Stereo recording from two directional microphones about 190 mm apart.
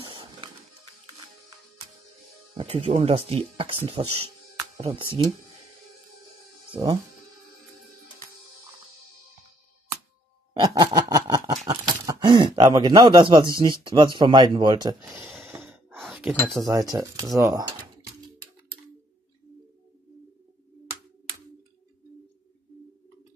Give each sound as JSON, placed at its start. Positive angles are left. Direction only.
{"t": 0.0, "sound": "music", "side_deg": -25}
{"t": 2.5, "sound": "speech", "side_deg": -30}
{"t": 6.7, "sound": "speech", "side_deg": -20}
{"t": 10.6, "sound": "a sound", "side_deg": -20}
{"t": 13.7, "sound": "speech", "side_deg": -25}
{"t": 15.2, "sound": "a sound", "side_deg": 0}
{"t": 16.6, "sound": "speech", "side_deg": -20}